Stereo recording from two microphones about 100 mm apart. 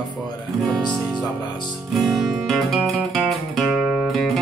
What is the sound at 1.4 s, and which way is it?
Speech, 45° left (ahead or behind).